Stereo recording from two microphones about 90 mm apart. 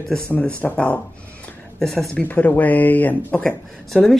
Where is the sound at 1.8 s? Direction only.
5° left (ahead or behind).